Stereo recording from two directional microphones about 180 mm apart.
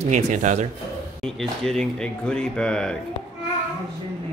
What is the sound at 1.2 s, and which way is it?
Speech, 5° left (ahead or behind).